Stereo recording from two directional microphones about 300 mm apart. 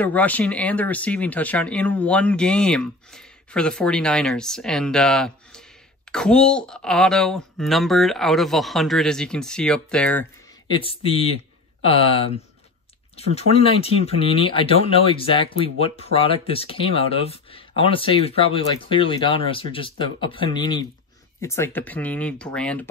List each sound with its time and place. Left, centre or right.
0.0 s speech: centre
10.7 s speech: centre